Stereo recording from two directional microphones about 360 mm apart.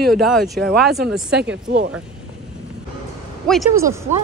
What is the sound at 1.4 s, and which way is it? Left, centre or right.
Speech, right.